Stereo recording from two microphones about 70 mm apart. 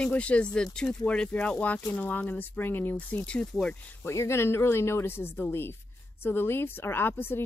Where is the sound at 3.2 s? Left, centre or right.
Centre.